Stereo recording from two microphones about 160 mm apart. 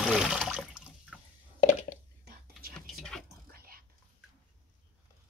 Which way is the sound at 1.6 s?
50° left (ahead or behind).